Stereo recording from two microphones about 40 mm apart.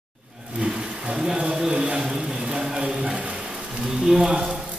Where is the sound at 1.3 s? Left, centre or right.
Centre.